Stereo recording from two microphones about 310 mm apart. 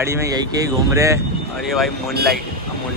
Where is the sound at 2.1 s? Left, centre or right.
Right.